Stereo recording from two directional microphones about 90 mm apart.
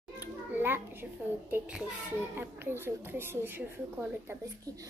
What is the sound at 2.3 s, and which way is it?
A woman's voice, 25° right (ahead or behind).